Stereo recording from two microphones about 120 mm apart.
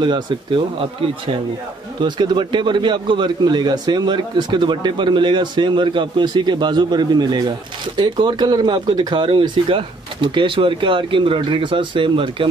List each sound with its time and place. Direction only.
2.0 s a man's voice: 40° right (ahead or behind)